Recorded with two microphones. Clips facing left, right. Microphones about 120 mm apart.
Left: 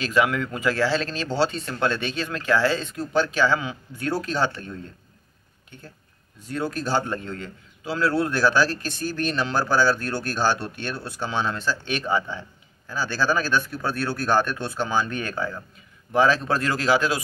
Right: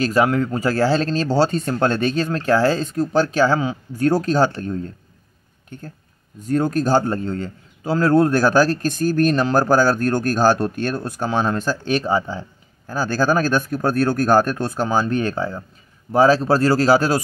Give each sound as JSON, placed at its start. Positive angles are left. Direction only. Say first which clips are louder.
{"t": 0.0, "sound": "speech", "louder": "right 5 dB", "side_deg": -40}